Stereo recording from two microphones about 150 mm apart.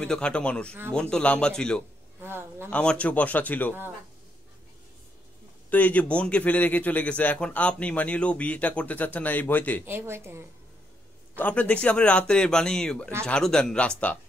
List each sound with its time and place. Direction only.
0.0 s a man's voice: 5° left (ahead or behind)
2.2 s a sound: 15° right (ahead or behind)
2.7 s a man's voice: 5° left (ahead or behind)
5.7 s a man's voice: 10° left (ahead or behind)
9.8 s speech: 15° right (ahead or behind)
11.3 s a man's voice: 10° left (ahead or behind)